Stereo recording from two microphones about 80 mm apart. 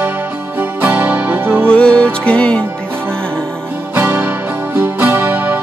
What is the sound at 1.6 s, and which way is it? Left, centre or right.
Music, centre.